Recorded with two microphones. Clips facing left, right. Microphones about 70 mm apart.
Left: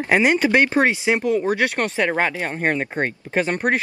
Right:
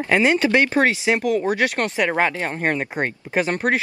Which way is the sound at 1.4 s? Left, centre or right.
Centre.